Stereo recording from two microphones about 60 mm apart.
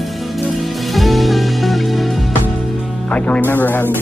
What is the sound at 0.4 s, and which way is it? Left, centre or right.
Music, centre.